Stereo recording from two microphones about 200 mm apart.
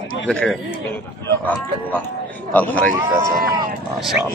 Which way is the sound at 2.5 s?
10° left (ahead or behind).